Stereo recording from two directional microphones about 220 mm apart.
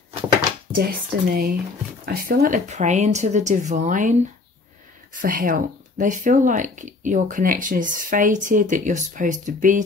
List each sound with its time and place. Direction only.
0.7 s speech: 45° right (ahead or behind)
5.1 s speech: 40° right (ahead or behind)